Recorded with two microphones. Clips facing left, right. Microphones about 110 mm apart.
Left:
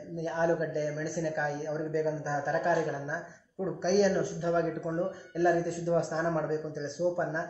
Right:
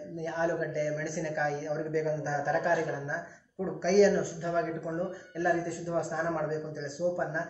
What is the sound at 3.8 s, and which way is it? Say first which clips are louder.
Speech: right 3 dB; 15° left (ahead or behind).